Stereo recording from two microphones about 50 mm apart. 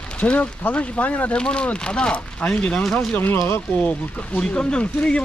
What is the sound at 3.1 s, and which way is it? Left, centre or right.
Speech, left.